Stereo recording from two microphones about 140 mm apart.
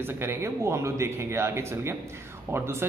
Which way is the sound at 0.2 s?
20° right (ahead or behind).